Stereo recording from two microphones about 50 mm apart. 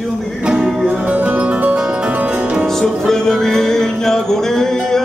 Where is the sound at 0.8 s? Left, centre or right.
Right.